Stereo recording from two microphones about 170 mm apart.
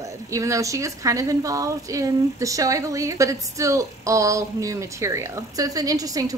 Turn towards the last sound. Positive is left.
turn(degrees=-20)  # may be behind; listen again after turning